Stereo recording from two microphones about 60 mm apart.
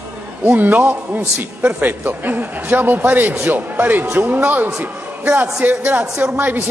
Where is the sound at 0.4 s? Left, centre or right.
Right.